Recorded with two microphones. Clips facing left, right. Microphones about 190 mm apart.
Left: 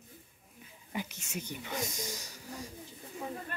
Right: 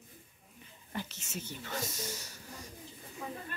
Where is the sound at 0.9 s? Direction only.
15° left (ahead or behind).